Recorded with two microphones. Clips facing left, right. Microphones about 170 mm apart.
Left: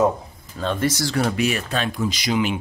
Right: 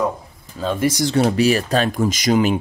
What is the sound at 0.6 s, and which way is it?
Speech, 10° right (ahead or behind).